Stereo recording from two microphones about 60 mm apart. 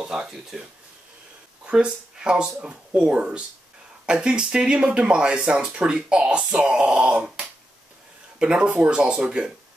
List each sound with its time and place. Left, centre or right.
0.0 s speech: centre
1.7 s speech: centre